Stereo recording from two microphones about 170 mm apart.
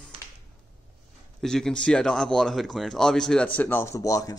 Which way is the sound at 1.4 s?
5° left (ahead or behind).